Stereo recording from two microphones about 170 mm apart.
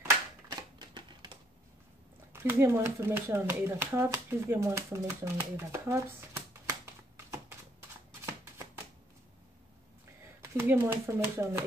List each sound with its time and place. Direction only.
0.5 s typewriter: 25° right (ahead or behind)
2.3 s speech: 15° right (ahead or behind)
8.3 s shuffling cards: 15° right (ahead or behind)
10.2 s speech: 15° right (ahead or behind)